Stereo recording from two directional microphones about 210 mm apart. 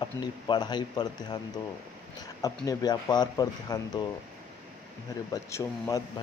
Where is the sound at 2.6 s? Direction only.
20° left (ahead or behind).